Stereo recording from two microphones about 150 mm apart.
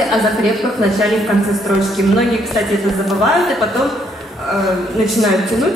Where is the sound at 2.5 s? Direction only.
Centre (ahead or behind).